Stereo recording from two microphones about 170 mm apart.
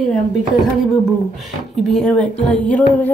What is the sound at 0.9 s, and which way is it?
A woman's voice, centre (ahead or behind).